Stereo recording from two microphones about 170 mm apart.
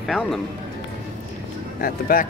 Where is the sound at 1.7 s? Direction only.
60° left (ahead or behind).